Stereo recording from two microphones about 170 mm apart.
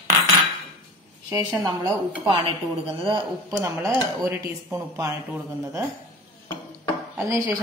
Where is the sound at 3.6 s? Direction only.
15° right (ahead or behind).